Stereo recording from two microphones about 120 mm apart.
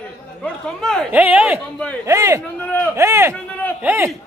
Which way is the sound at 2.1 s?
25° right (ahead or behind).